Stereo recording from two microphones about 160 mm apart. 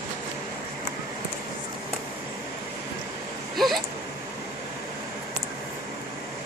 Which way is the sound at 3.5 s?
Centre (ahead or behind).